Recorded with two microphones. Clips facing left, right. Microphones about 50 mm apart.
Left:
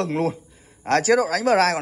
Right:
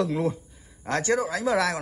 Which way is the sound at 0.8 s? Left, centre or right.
Left.